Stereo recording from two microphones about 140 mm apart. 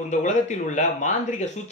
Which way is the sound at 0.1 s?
60° left (ahead or behind).